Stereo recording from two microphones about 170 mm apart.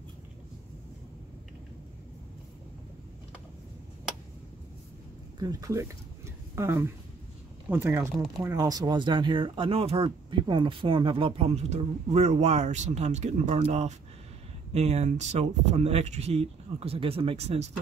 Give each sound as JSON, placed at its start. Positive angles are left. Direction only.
{"t": 5.4, "sound": "speech", "side_deg": -20}